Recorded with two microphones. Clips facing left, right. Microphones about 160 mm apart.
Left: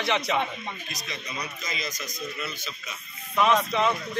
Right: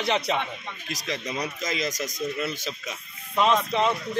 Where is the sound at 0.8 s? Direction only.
90° right.